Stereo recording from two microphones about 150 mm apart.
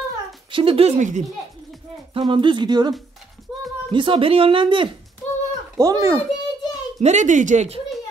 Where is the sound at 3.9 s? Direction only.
35° right (ahead or behind).